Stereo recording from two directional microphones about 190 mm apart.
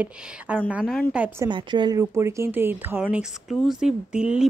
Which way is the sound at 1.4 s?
25° right (ahead or behind).